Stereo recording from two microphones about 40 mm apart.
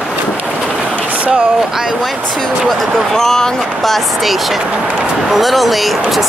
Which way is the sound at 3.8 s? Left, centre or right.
Centre.